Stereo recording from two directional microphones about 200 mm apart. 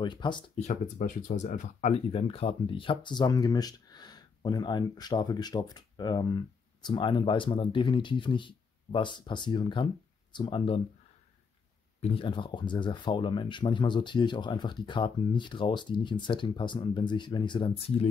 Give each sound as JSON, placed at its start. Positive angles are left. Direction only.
{"t": 0.0, "sound": "speech", "side_deg": 25}
{"t": 0.6, "sound": "speech", "side_deg": 40}
{"t": 12.0, "sound": "speech", "side_deg": 25}